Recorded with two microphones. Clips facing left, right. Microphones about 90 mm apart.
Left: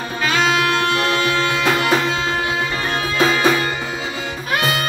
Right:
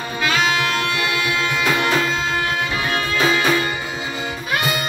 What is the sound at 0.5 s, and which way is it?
Music, 35° left (ahead or behind).